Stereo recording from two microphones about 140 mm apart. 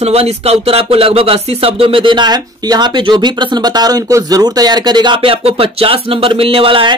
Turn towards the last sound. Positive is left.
turn(degrees=-40)  # may be behind; listen again after turning